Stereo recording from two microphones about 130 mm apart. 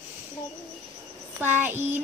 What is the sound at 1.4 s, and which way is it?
Speech, 15° right (ahead or behind).